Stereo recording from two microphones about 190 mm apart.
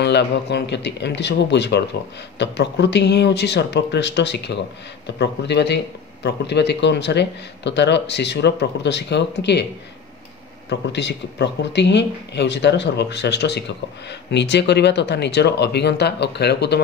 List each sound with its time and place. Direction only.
0.0 s speech: 60° left (ahead or behind)
10.7 s speech: 65° left (ahead or behind)